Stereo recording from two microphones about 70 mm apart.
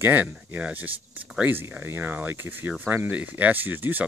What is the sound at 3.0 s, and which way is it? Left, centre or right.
Speech, right.